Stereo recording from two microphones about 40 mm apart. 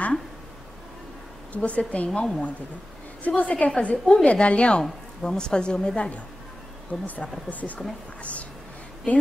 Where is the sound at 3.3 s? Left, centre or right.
Left.